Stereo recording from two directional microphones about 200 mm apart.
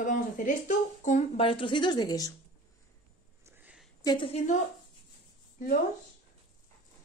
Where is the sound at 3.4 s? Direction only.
10° right (ahead or behind).